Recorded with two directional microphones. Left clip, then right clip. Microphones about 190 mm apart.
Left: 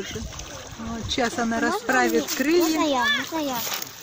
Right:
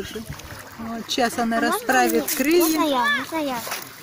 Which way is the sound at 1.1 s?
10° right (ahead or behind).